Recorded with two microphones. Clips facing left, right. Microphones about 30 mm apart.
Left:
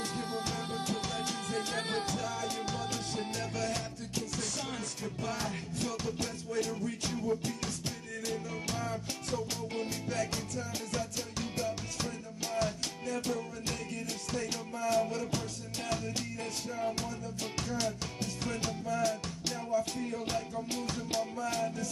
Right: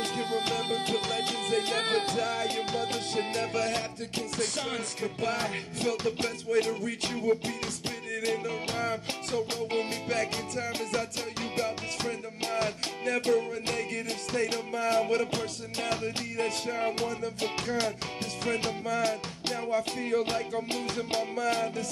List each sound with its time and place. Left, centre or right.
0.0 s music: right
0.4 s music: right
13.0 s music: right
18.9 s music: right
21.4 s music: right